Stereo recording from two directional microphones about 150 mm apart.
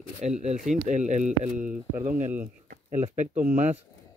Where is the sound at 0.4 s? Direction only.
50° right (ahead or behind).